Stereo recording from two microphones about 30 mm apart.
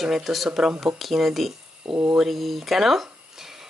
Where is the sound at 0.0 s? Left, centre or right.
Centre.